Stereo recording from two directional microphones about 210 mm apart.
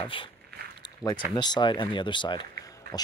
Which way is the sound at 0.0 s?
25° left (ahead or behind).